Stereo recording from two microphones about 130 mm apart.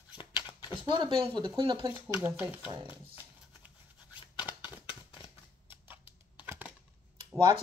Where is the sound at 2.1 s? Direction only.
10° right (ahead or behind).